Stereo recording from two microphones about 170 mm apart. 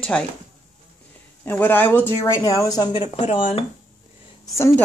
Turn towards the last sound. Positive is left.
turn(degrees=15)  # may be behind; listen again after turning